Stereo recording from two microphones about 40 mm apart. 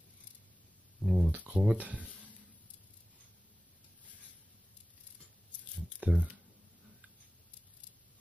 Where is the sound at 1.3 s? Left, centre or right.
Right.